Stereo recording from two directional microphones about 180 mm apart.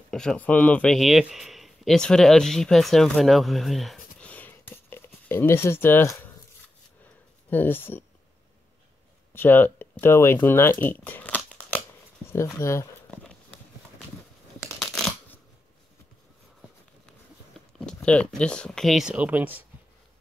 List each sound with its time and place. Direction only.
0.1 s speech: 5° left (ahead or behind)
7.4 s speech: 10° left (ahead or behind)
9.3 s speech: 10° left (ahead or behind)
14.8 s a sound: centre (ahead or behind)
17.7 s speech: 5° left (ahead or behind)